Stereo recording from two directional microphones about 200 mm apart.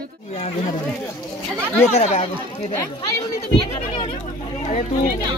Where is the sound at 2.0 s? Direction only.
35° left (ahead or behind).